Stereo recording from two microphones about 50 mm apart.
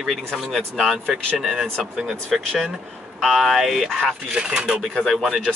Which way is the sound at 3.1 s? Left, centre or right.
Centre.